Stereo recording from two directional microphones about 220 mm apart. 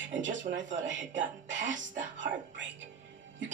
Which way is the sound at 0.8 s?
55° right (ahead or behind).